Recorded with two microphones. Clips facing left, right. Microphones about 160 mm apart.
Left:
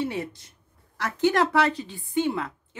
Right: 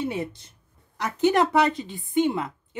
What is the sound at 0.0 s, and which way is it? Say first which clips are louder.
A woman's voice: right 1 dB; 20° right (ahead or behind).